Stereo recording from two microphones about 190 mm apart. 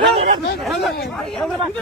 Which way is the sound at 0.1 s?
55° right (ahead or behind).